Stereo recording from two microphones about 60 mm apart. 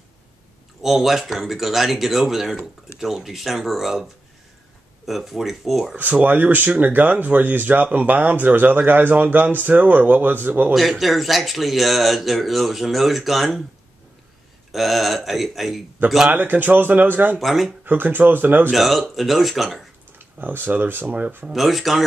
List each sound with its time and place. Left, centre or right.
0.8 s speech: centre
5.9 s speech: right
10.7 s speech: centre
14.7 s speech: centre
16.3 s speech: right
17.4 s speech: centre
17.8 s speech: right
18.7 s speech: centre
20.2 s speech: right
21.5 s speech: centre